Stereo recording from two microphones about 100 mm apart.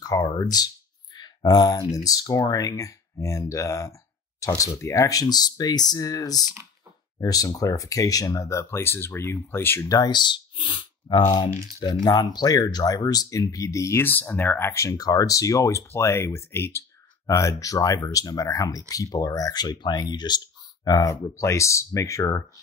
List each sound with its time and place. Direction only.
0.0 s speech: 35° left (ahead or behind)
1.1 s a sound: 45° left (ahead or behind)
2.0 s speech: 40° left (ahead or behind); by 9.8 s 20° left (ahead or behind)
9.8 s speech: 40° left (ahead or behind)